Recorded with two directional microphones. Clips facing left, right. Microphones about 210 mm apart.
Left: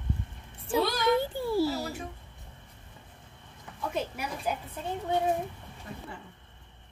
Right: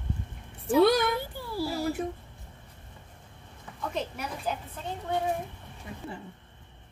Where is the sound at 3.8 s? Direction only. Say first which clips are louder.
Left 1 dB; 10° left (ahead or behind).